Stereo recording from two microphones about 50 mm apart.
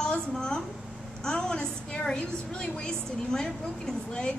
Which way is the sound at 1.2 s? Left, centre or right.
Centre.